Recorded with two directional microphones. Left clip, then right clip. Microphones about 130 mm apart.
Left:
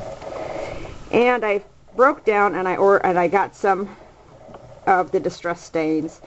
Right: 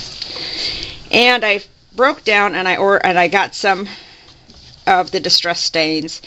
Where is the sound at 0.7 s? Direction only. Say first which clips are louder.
Right 8 dB; 35° right (ahead or behind); by 5.9 s 55° right (ahead or behind).